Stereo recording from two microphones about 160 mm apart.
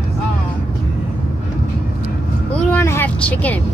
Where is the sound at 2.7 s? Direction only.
15° left (ahead or behind).